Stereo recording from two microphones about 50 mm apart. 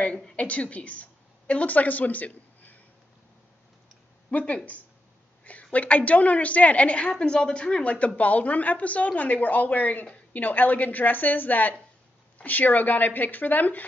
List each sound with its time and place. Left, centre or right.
0.4 s a woman's voice: left
4.3 s a woman's voice: left